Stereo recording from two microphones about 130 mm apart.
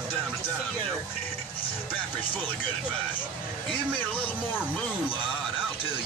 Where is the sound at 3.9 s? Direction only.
10° left (ahead or behind).